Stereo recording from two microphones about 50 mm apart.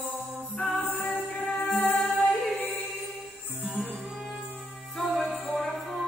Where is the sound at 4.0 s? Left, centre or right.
Centre.